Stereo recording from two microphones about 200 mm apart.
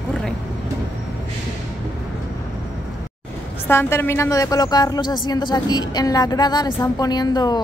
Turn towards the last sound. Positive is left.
turn(degrees=20)  # may be behind; listen again after turning